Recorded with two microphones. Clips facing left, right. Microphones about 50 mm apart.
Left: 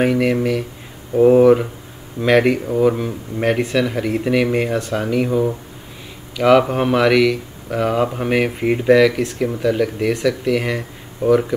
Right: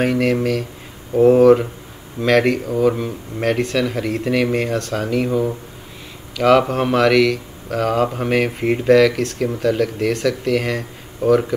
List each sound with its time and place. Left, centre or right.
0.0 s speech: centre
2.2 s speech: centre
2.9 s speech: centre
3.4 s speech: centre
5.2 s speech: centre
11.2 s speech: centre